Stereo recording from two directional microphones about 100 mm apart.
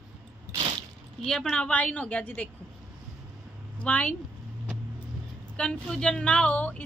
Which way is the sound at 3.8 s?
15° left (ahead or behind).